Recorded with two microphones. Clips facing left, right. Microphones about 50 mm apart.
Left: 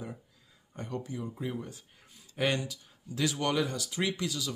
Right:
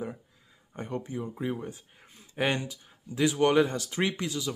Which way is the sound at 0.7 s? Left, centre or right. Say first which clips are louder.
Right 3 dB; right.